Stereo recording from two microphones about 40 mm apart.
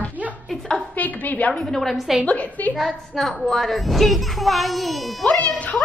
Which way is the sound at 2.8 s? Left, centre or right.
Centre.